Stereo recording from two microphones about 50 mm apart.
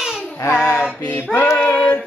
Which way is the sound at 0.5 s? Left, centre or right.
Left.